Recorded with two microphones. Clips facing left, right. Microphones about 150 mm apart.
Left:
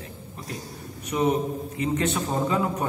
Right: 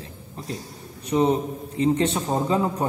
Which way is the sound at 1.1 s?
30° right (ahead or behind).